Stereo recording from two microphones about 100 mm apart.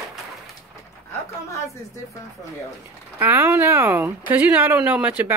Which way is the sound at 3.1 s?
20° right (ahead or behind).